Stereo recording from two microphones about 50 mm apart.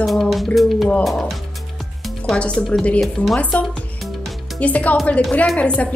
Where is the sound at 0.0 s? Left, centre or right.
Centre.